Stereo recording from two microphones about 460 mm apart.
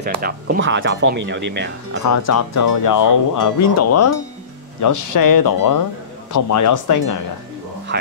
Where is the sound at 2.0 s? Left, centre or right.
Left.